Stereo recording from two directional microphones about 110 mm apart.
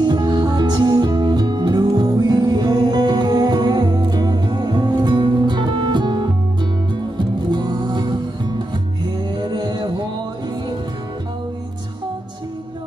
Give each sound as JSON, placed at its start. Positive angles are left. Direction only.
{"t": 0.0, "sound": "music", "side_deg": -40}
{"t": 7.5, "sound": "music", "side_deg": -45}